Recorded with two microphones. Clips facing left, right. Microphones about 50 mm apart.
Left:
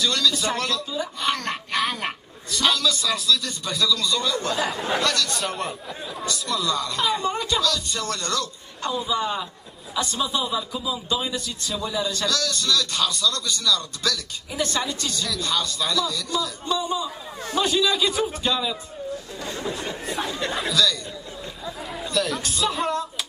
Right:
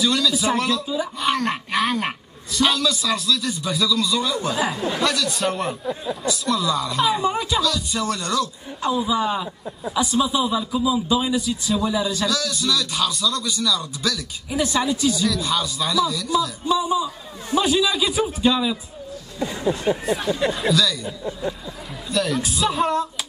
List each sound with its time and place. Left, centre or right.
0.0 s a man's voice: centre
20.5 s a man's voice: centre
22.1 s a man's voice: centre